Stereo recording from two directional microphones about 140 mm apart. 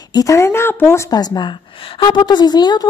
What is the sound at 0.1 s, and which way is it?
Speech, 25° left (ahead or behind).